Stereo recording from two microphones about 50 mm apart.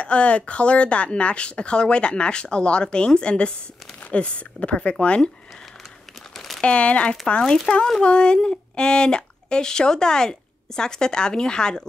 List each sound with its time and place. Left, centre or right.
0.0 s speech: left
6.3 s crumpling: centre
6.6 s speech: left